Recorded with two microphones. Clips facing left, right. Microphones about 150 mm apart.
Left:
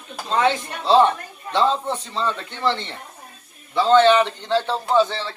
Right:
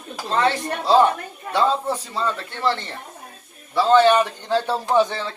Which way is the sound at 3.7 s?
10° right (ahead or behind).